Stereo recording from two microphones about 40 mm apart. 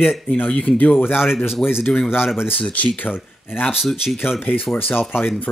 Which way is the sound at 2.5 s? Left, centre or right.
Left.